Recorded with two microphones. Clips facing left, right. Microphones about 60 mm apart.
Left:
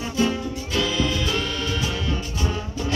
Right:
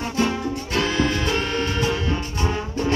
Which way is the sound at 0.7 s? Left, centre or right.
Right.